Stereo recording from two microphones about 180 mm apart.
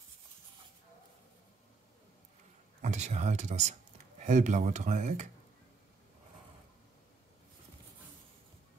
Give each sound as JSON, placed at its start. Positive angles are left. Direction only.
{"t": 2.8, "sound": "speech", "side_deg": -40}